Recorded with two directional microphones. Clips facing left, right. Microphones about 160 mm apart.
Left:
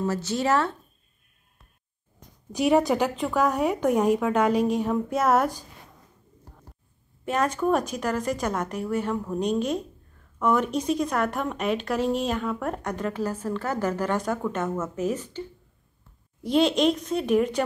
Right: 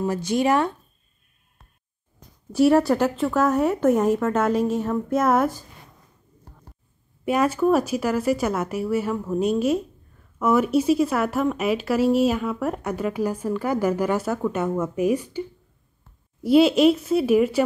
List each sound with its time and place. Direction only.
0.0 s speech: 15° right (ahead or behind)
2.5 s a woman's voice: 15° left (ahead or behind)
7.2 s speech: 10° right (ahead or behind)
16.4 s speech: 5° right (ahead or behind)